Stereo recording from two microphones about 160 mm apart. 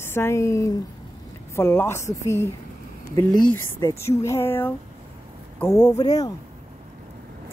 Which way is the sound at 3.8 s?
20° left (ahead or behind).